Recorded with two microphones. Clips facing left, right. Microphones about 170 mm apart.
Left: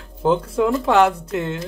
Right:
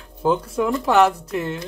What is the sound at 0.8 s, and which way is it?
Speech, 25° left (ahead or behind).